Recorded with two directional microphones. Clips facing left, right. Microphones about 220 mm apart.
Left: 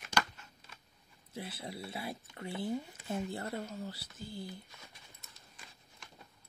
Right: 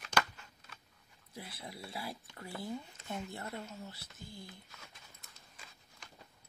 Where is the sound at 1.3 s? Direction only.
25° left (ahead or behind).